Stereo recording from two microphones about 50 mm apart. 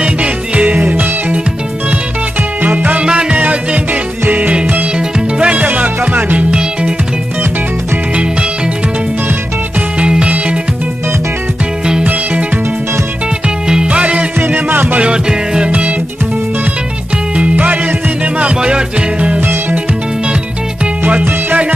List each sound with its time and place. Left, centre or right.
0.0 s music: right
2.6 s music: right
9.9 s music: right
12.0 s music: right
13.7 s music: centre
14.4 s music: right
15.0 s music: centre
18.2 s music: right
21.5 s music: right